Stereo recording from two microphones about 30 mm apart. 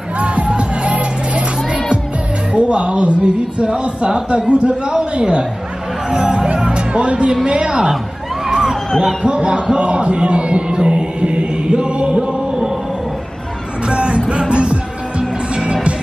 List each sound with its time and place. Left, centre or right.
0.2 s music: right
2.5 s speech: right
5.2 s speech: right
8.5 s a sound: right
9.0 s speech: right
11.1 s music: right
13.8 s music: right